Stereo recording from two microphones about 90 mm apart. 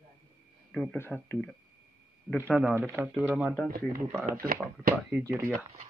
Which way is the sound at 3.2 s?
10° right (ahead or behind).